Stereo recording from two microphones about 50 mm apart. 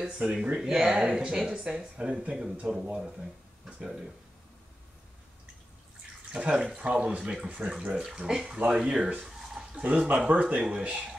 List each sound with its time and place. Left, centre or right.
0.2 s speech: right
0.6 s speech: centre
6.3 s speech: centre
7.9 s speech: centre
9.2 s speech: centre; by 11.0 s right